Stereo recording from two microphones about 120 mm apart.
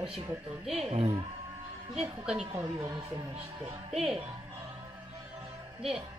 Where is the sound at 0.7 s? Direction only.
55° right (ahead or behind).